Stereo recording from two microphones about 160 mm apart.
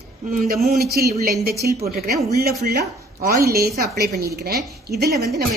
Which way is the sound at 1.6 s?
65° right (ahead or behind).